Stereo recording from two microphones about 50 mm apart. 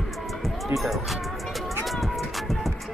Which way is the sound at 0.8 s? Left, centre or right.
Centre.